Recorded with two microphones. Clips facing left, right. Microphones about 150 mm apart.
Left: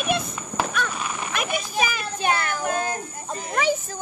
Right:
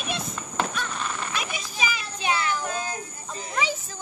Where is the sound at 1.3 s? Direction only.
55° left (ahead or behind).